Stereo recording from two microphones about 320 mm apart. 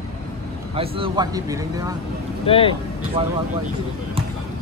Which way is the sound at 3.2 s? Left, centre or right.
Centre.